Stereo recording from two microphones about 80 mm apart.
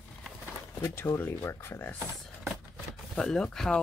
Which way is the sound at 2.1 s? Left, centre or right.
Centre.